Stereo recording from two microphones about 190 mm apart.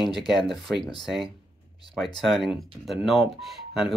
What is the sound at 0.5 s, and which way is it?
Speech, centre (ahead or behind).